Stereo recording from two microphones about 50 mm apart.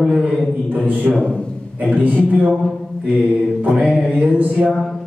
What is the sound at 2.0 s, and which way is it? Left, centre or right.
Speech, right.